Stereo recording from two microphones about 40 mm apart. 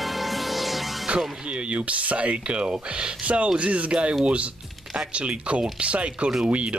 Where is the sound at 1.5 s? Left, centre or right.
Right.